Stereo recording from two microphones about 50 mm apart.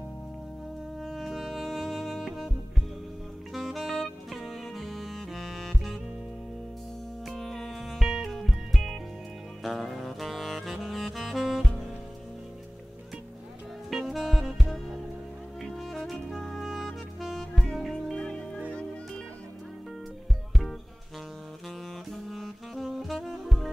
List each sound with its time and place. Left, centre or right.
1.0 s music: centre
3.5 s saxophone: centre
4.3 s music: centre
7.2 s music: centre
9.6 s saxophone: centre
13.8 s saxophone: centre
15.6 s music: centre
18.1 s music: centre
22.1 s saxophone: centre
22.8 s saxophone: centre
23.1 s saxophone: centre